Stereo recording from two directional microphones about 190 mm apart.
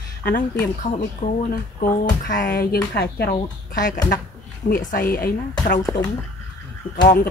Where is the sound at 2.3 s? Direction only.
50° left (ahead or behind).